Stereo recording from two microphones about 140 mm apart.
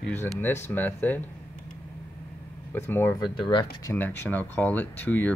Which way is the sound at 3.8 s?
15° left (ahead or behind).